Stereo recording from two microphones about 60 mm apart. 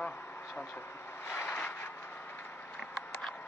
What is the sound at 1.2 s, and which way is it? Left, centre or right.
Vehicle, left.